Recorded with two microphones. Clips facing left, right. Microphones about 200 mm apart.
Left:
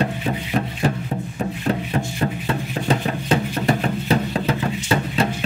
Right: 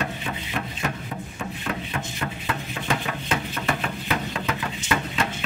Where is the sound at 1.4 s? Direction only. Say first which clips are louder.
Left 8 dB; 30° left (ahead or behind).